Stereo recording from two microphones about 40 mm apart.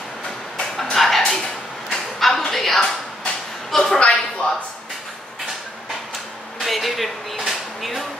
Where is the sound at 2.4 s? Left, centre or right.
Centre.